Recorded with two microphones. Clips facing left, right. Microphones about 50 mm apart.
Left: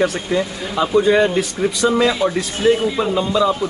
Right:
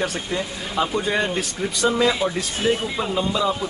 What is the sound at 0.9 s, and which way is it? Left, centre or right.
Speech, centre.